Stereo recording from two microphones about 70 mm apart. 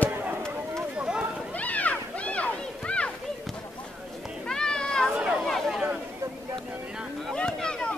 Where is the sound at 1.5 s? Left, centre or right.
Left.